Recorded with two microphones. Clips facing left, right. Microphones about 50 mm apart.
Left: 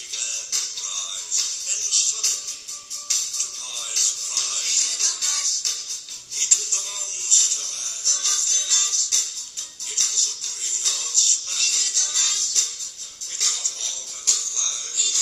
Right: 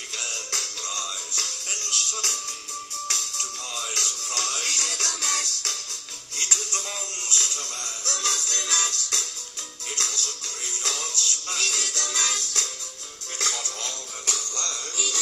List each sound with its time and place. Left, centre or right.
0.2 s music: right